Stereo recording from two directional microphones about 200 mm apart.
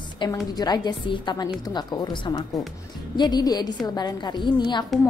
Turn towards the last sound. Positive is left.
turn(degrees=20)  # may be behind; listen again after turning